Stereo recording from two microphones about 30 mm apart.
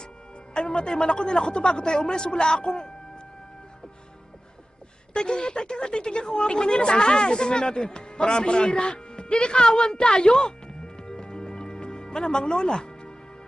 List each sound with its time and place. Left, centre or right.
0.6 s speech: left
5.1 s speech: left
11.0 s music: left